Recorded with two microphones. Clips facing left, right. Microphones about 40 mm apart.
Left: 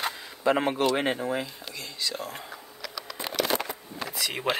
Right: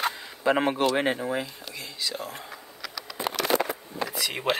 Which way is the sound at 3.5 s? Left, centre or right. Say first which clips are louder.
Right 8 dB; right.